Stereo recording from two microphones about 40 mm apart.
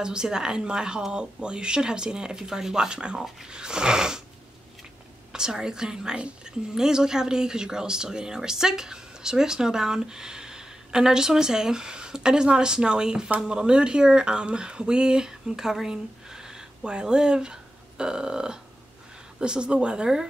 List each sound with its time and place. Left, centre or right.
0.0 s speech: centre
5.3 s speech: centre